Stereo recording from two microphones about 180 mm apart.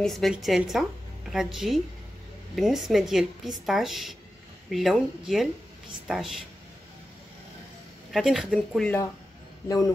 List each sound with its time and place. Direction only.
0.0 s speech: centre (ahead or behind)
8.1 s speech: centre (ahead or behind)
8.5 s speech: 10° left (ahead or behind)
9.7 s a man's voice: 20° left (ahead or behind)